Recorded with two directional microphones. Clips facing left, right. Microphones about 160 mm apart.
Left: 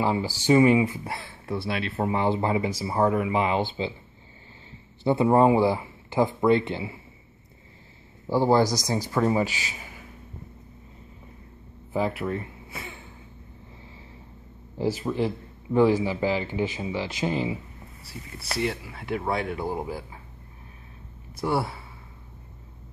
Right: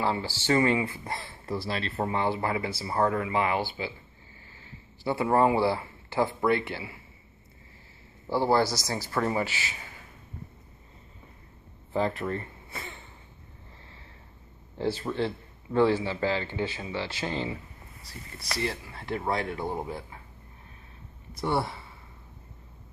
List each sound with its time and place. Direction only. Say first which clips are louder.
0.0 s speech: left 4 dB; 15° left (ahead or behind)
1.1 s speech: left 2 dB; 5° left (ahead or behind)
2.0 s speech: left 4 dB; 15° left (ahead or behind)
5.0 s speech: left 4 dB; 20° left (ahead or behind)
8.3 s speech: left 4 dB; 15° left (ahead or behind)
11.9 s speech: left 2 dB; 10° left (ahead or behind)
14.8 s speech: left 3 dB; 10° left (ahead or behind)
18.6 s speech: left 4 dB; 5° left (ahead or behind)
21.4 s speech: left 2 dB; 5° left (ahead or behind)